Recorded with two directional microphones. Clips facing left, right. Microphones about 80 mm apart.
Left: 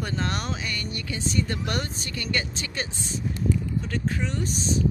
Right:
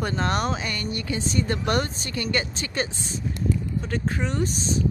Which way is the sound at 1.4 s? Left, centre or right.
Right.